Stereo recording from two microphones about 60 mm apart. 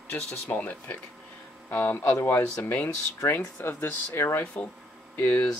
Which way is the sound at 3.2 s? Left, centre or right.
Left.